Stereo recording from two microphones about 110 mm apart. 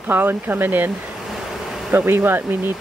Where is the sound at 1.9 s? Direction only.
20° right (ahead or behind).